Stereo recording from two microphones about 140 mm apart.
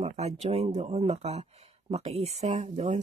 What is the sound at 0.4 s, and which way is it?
Speech, 50° right (ahead or behind).